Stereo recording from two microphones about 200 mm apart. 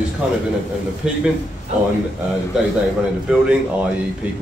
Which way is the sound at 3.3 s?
5° right (ahead or behind).